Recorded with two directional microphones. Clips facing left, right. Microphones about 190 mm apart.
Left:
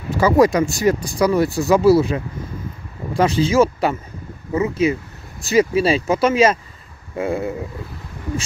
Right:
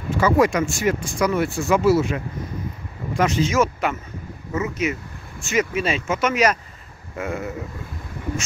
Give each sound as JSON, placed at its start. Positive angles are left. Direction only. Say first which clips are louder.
{"t": 0.1, "sound": "speech", "louder": "left 4 dB", "side_deg": 35}